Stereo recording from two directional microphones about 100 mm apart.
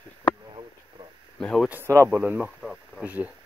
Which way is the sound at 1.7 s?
25° right (ahead or behind).